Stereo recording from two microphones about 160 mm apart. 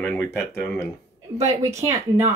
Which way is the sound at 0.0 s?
10° left (ahead or behind).